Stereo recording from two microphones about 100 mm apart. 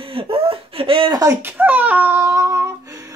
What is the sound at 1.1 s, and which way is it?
Speech, 35° right (ahead or behind).